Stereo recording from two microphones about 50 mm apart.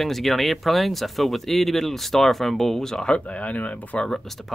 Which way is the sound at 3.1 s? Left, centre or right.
Left.